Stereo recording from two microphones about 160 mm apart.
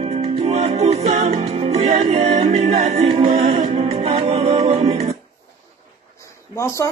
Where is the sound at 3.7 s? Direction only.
40° right (ahead or behind).